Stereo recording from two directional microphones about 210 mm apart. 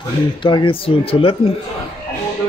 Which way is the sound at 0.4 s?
20° left (ahead or behind).